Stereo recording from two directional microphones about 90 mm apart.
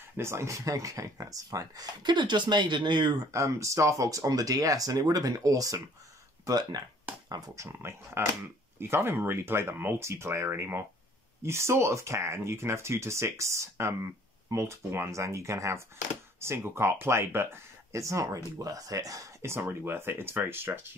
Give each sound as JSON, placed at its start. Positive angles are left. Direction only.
{"t": 0.2, "sound": "speech", "side_deg": -30}
{"t": 3.2, "sound": "speech", "side_deg": -35}
{"t": 7.6, "sound": "speech", "side_deg": -30}